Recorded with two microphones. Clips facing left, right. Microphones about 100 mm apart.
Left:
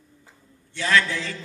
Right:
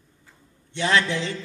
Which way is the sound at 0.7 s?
20° right (ahead or behind).